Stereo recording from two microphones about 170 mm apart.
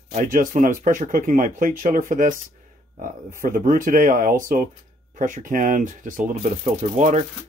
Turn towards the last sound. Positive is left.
turn(degrees=-45)  # may be behind; listen again after turning